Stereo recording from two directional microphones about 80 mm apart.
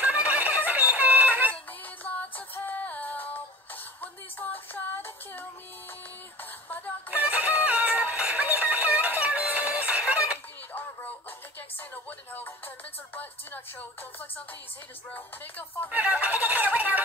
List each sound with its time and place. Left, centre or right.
0.0 s music: centre
1.5 s music: centre
7.1 s chicken: centre
7.6 s music: centre
10.7 s music: left
15.1 s music: left
15.9 s a sound: centre